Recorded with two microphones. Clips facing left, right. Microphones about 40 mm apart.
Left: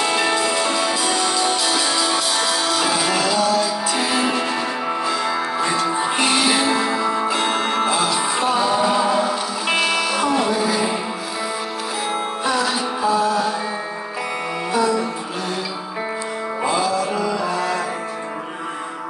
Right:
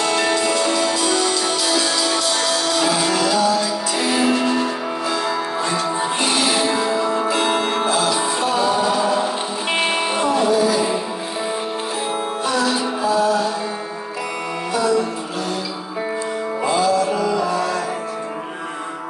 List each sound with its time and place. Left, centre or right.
0.0 s music: centre
8.1 s music: centre
9.7 s music: right
10.3 s music: centre
12.4 s music: left
16.6 s music: centre